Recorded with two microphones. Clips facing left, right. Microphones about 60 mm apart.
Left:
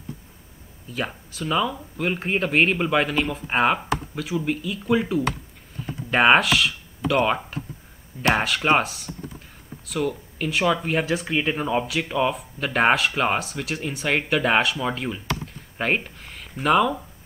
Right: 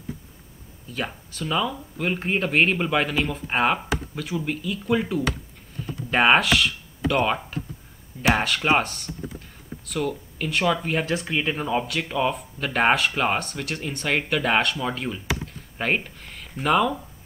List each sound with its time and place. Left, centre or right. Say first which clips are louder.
0.8 s speech: left 1 dB; centre